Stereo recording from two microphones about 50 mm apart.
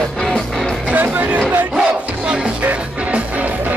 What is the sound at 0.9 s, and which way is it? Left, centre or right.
Music, right.